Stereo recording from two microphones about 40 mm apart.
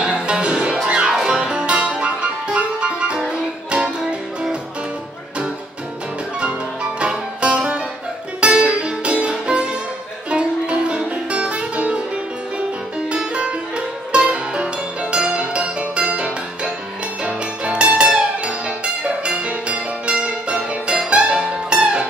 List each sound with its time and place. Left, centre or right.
0.1 s music: right
6.4 s music: right
13.3 s music: right